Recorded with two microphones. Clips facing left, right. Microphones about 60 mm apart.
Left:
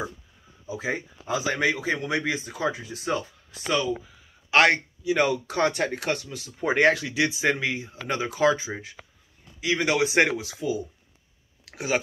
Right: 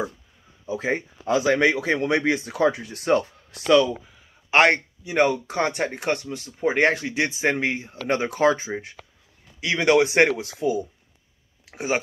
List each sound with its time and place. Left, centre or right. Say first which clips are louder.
0.7 s speech: right 4 dB; right
3.6 s speech: right 8 dB; right
4.5 s speech: right 2 dB; right
9.6 s speech: right 5 dB; right
11.7 s speech: right 1 dB; right